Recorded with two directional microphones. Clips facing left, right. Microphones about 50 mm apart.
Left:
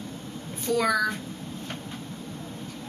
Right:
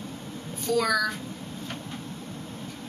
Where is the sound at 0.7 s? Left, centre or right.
Centre.